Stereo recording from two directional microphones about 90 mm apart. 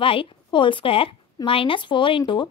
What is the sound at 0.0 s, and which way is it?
A woman's voice, 90° left.